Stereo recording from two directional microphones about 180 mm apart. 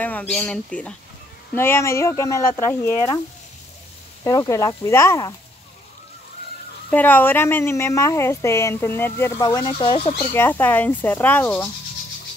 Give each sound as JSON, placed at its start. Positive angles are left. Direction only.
{"t": 0.0, "sound": "speech", "side_deg": 10}
{"t": 4.2, "sound": "speech", "side_deg": 15}
{"t": 6.9, "sound": "speech", "side_deg": 10}
{"t": 10.1, "sound": "speech", "side_deg": 10}